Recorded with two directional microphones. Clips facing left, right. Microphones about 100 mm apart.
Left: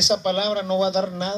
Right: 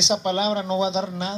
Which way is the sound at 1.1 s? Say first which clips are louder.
Left 2 dB; 10° right (ahead or behind).